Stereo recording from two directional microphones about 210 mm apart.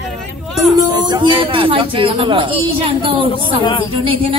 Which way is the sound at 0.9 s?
20° right (ahead or behind).